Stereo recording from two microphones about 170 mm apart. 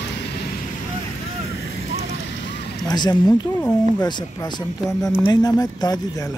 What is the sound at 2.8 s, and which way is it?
Speech, 25° left (ahead or behind).